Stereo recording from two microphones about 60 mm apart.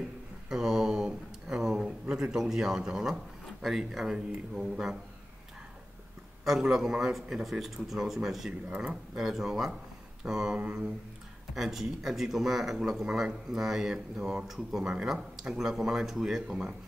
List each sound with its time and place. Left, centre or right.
0.5 s a sound: centre
3.6 s a man's voice: centre
6.4 s speech: centre
8.6 s a man's voice: centre
11.5 s a man's voice: centre